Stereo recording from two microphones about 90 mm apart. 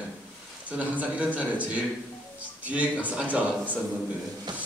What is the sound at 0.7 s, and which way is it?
Speech, 15° right (ahead or behind).